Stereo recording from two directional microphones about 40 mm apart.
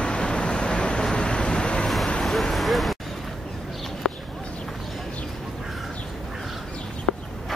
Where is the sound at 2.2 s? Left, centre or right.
Centre.